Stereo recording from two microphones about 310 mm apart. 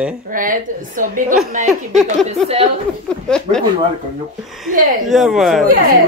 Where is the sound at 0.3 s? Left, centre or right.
Right.